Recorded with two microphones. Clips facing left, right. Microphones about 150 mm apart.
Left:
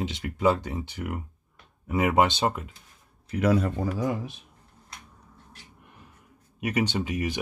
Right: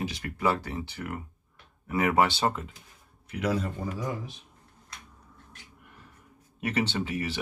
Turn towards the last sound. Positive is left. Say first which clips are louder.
# left 2 dB
turn(degrees=15)  # may be behind; listen again after turning